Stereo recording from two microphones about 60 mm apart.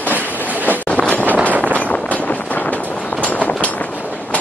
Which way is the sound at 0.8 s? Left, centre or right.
Left.